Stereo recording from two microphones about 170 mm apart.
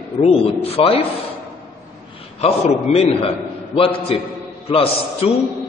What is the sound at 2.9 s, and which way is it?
Speech, 45° left (ahead or behind).